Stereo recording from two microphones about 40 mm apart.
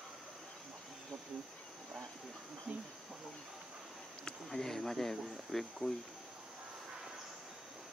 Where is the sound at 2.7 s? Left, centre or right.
Right.